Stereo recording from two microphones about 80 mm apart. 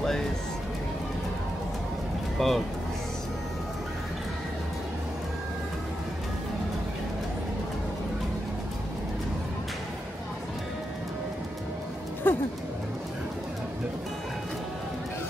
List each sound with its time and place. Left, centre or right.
2.3 s speech: centre
12.2 s music: left